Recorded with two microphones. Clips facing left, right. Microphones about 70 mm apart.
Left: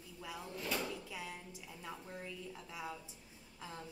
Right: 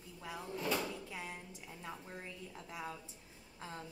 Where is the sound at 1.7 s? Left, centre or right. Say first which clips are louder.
Even; centre.